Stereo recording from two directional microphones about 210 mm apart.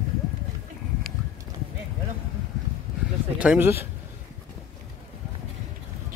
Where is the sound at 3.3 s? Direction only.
5° right (ahead or behind).